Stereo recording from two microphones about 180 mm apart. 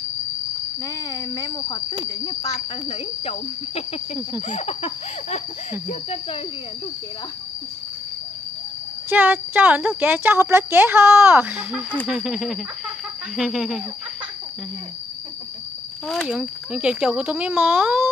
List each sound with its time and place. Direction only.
0.8 s speech: 15° left (ahead or behind); by 6.4 s 35° left (ahead or behind)
9.1 s speech: 10° right (ahead or behind)
16.1 s speech: centre (ahead or behind)